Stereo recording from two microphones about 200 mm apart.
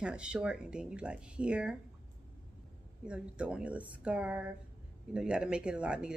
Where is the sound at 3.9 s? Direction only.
5° right (ahead or behind).